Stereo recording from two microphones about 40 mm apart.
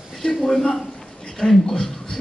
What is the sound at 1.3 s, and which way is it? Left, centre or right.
Speech, centre.